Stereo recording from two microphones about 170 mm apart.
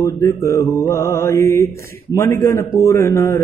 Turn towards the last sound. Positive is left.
turn(degrees=15)  # may be behind; listen again after turning